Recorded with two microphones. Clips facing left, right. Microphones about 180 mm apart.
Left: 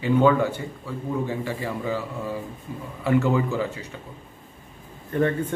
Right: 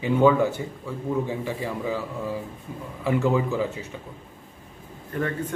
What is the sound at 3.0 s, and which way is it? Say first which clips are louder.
Speech: left 1 dB; 5° right (ahead or behind).